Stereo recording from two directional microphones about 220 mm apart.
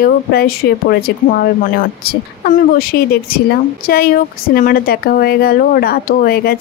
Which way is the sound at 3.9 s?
45° left (ahead or behind).